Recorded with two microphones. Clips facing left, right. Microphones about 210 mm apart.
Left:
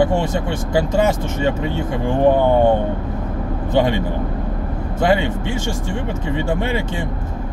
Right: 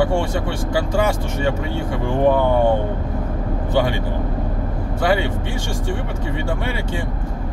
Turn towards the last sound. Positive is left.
turn(degrees=20)  # may be behind; listen again after turning